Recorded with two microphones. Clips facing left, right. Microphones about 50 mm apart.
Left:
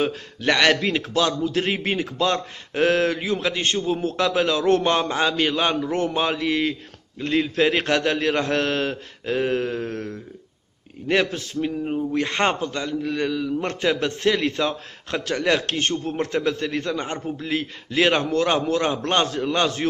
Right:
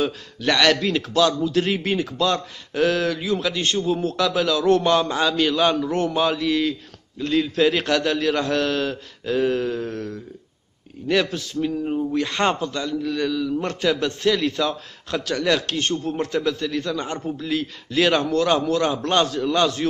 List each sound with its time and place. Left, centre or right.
0.0 s a man's voice: left